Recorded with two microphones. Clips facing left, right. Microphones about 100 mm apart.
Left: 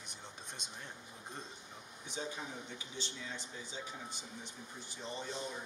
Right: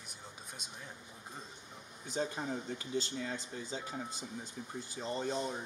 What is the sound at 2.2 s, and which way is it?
Speech, 50° right (ahead or behind).